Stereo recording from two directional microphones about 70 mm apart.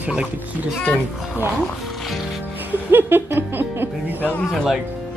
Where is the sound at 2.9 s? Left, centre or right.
Right.